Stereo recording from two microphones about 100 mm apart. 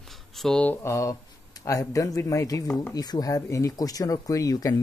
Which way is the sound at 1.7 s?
35° left (ahead or behind).